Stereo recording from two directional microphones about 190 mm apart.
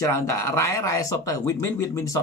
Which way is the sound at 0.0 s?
15° left (ahead or behind).